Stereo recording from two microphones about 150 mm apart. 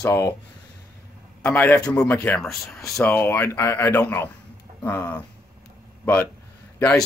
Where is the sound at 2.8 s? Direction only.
20° left (ahead or behind).